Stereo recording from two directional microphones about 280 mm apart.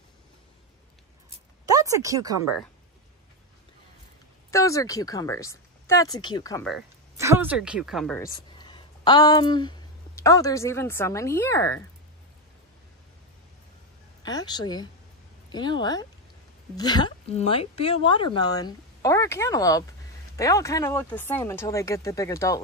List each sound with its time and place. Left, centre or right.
1.7 s speech: centre
4.5 s a woman's voice: centre
7.2 s speech: centre
8.5 s speech: centre
14.2 s a woman's voice: centre